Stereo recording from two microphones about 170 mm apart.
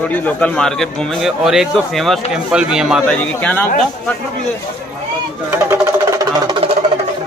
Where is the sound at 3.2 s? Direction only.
10° left (ahead or behind).